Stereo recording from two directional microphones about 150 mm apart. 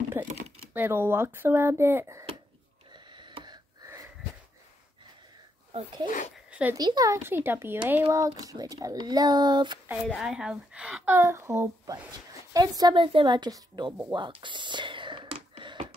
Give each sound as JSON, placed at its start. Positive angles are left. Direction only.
{"t": 0.2, "sound": "typing", "side_deg": -15}
{"t": 0.7, "sound": "a woman's voice", "side_deg": -15}
{"t": 2.9, "sound": "a sound", "side_deg": -30}
{"t": 5.7, "sound": "speech", "side_deg": -45}
{"t": 6.7, "sound": "speech", "side_deg": -25}
{"t": 10.0, "sound": "a woman's voice", "side_deg": 0}
{"t": 14.1, "sound": "a sound", "side_deg": -30}